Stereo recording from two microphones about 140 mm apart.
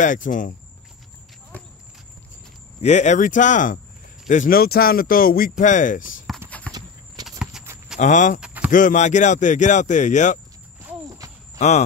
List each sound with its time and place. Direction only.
0.0 s speech: 70° left (ahead or behind)
2.8 s speech: 55° left (ahead or behind)
4.3 s speech: 75° left (ahead or behind)
6.7 s clip-clop: 10° left (ahead or behind)
7.2 s a sound: 5° right (ahead or behind)
8.0 s speech: 60° left (ahead or behind)
8.4 s a sound: 10° right (ahead or behind)
8.7 s speech: 65° left (ahead or behind)
11.5 s a sound: 55° left (ahead or behind)